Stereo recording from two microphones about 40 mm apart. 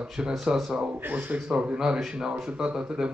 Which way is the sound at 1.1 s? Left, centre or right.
Right.